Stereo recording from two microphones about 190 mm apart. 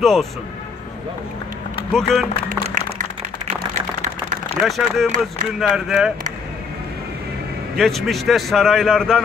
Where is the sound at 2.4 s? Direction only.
40° right (ahead or behind).